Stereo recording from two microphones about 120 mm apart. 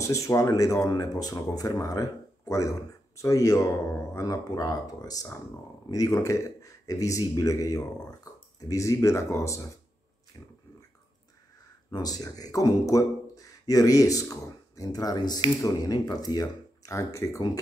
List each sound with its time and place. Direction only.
0.0 s speech: 25° left (ahead or behind)
11.9 s speech: 30° left (ahead or behind)